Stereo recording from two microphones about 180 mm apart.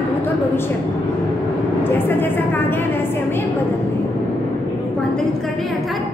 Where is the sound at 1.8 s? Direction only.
10° left (ahead or behind).